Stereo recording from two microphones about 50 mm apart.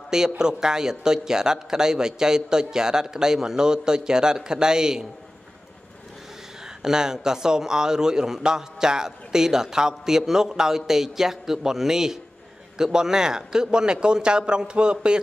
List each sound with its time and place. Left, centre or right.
0.4 s a man's voice: centre
6.8 s a man's voice: centre